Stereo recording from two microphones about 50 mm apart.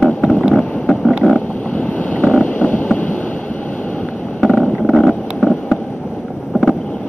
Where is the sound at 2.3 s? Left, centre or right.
Left.